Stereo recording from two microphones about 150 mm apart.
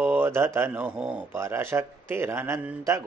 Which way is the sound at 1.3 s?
15° right (ahead or behind).